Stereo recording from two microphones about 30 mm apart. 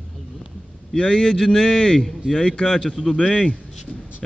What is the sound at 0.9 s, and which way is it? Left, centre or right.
A man's voice, left.